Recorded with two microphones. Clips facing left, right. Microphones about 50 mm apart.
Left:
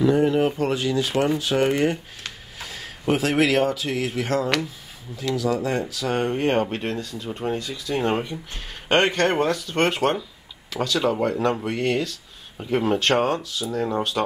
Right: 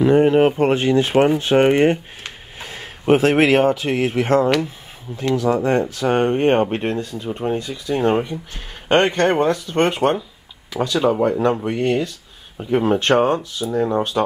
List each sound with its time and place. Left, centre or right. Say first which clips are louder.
0.0 s speech: right 5 dB; right
7.2 s speech: right 4 dB; centre
8.1 s speech: right 5 dB; centre
13.0 s speech: right 5 dB; right